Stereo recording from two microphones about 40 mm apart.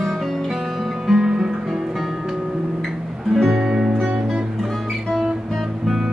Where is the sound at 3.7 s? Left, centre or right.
Centre.